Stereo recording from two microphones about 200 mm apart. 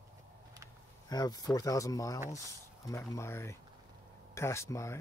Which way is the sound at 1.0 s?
20° left (ahead or behind).